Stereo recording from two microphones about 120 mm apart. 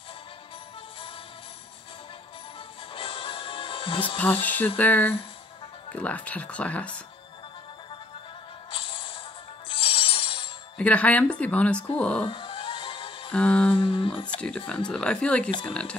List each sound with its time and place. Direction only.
2.9 s music: 50° left (ahead or behind)
4.2 s speech: 15° left (ahead or behind)
8.7 s music: 45° left (ahead or behind)
10.8 s speech: 10° left (ahead or behind)
12.3 s music: 45° left (ahead or behind)
13.3 s speech: 10° left (ahead or behind)
13.7 s speech: 45° left (ahead or behind)
14.9 s speech: 5° left (ahead or behind)